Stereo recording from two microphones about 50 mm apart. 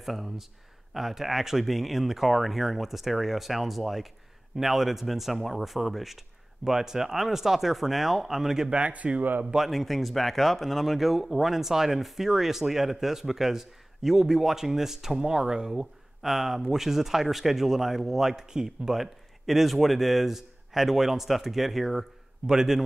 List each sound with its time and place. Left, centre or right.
0.0 s speech: centre
8.6 s speech: right
9.6 s speech: centre
19.4 s speech: centre